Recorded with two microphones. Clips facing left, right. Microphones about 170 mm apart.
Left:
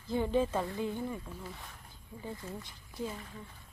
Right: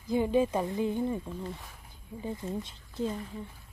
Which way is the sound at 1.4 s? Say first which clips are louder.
Right 5 dB; centre (ahead or behind).